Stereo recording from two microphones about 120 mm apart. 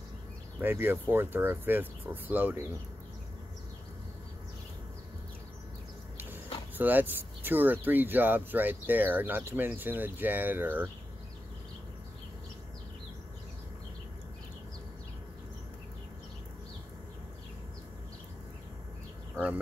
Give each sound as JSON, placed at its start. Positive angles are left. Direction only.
{"t": 0.6, "sound": "speech", "side_deg": -15}
{"t": 6.1, "sound": "speech", "side_deg": -15}